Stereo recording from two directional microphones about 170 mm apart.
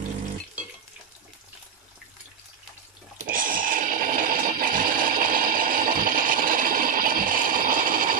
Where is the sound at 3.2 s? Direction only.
55° right (ahead or behind).